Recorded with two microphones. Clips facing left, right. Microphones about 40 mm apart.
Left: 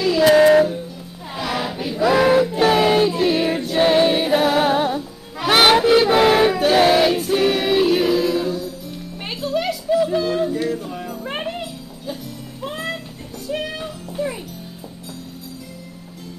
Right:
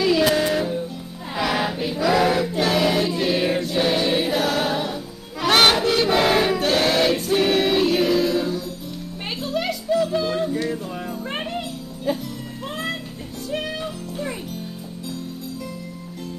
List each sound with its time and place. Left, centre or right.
0.3 s music: left
1.5 s a sound: centre
2.0 s a sound: left
3.1 s music: centre
3.7 s choir: left
4.1 s music: centre
5.8 s choir: centre
9.4 s music: centre
10.1 s yodeling: centre
10.7 s music: centre
13.5 s music: centre